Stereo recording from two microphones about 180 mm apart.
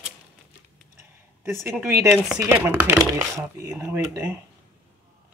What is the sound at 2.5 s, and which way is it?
Speech, 10° right (ahead or behind).